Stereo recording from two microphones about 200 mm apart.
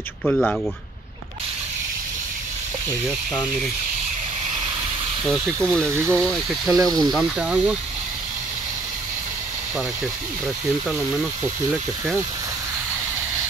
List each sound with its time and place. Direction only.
0.2 s speech: centre (ahead or behind)
5.2 s speech: centre (ahead or behind)
6.8 s speech: 20° right (ahead or behind)
7.1 s speech: 5° right (ahead or behind)